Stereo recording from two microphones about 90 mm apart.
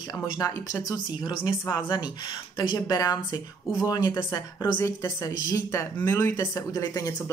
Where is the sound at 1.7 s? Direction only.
55° left (ahead or behind).